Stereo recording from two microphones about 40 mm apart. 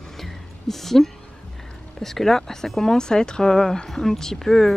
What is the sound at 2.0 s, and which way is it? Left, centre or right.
Speech, centre.